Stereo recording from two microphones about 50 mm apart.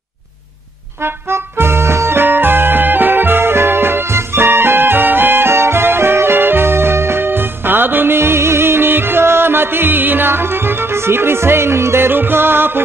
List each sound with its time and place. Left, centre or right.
1.0 s music: right
12.1 s music: right